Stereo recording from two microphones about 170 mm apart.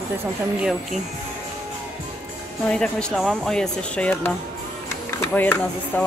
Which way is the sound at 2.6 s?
5° left (ahead or behind).